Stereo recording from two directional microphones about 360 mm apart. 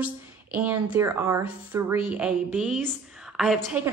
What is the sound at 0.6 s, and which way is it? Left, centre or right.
A woman's voice, centre.